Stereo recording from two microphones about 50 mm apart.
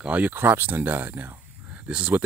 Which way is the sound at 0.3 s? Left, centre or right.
Right.